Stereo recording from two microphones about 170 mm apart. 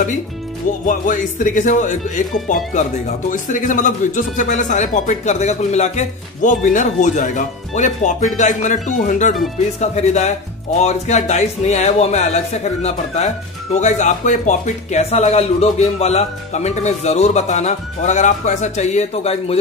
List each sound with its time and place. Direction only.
0.8 s speech: 50° left (ahead or behind)